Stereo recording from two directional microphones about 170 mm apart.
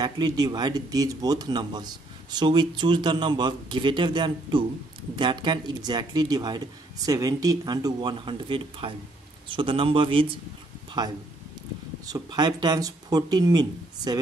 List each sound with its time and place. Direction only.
0.0 s speech: 25° right (ahead or behind)
12.1 s speech: 25° right (ahead or behind)